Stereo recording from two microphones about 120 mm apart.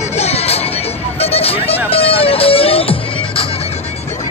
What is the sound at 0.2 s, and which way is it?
Music, 60° left (ahead or behind).